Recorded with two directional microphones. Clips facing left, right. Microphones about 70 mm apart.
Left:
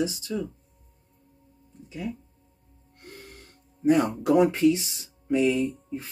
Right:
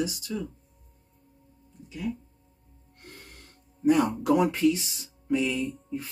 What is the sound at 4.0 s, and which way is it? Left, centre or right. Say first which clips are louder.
Speech: even; centre.